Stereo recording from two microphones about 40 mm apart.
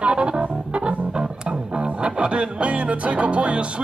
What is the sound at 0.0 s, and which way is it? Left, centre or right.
Music, right.